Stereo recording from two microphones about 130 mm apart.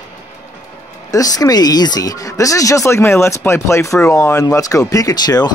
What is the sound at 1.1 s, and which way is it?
Speech, 30° left (ahead or behind).